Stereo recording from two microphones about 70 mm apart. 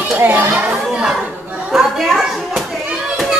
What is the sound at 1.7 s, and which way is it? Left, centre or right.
Speech, centre.